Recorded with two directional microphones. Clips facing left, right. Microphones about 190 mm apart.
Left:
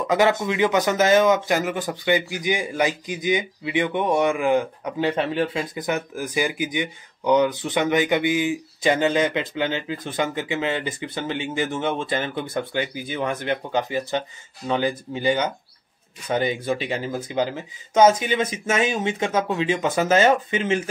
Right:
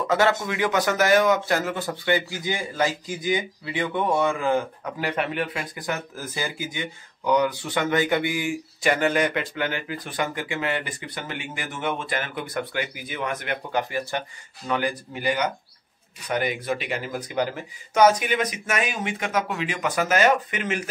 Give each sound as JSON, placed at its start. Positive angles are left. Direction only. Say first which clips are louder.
{"t": 0.0, "sound": "speech", "louder": "left 2 dB", "side_deg": 15}